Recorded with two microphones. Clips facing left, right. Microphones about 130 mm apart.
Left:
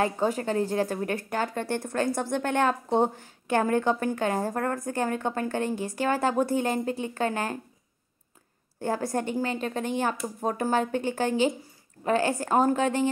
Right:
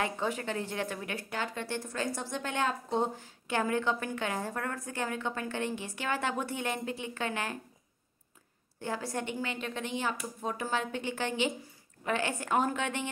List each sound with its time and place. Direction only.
0.0 s speech: 40° left (ahead or behind)
8.8 s a woman's voice: 45° left (ahead or behind)